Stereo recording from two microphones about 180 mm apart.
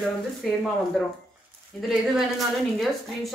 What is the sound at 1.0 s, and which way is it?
A woman's voice, centre (ahead or behind).